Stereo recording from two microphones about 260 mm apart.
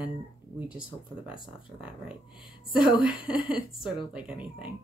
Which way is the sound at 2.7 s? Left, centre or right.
Centre.